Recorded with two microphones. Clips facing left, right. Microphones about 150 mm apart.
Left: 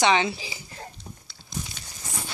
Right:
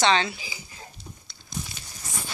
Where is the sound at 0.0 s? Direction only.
15° left (ahead or behind).